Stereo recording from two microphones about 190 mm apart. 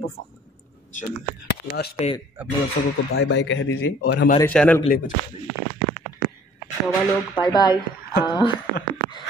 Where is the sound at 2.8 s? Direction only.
30° left (ahead or behind).